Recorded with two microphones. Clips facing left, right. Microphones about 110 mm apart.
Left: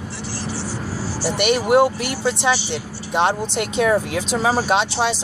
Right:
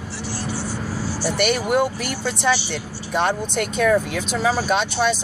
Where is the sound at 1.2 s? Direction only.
20° left (ahead or behind).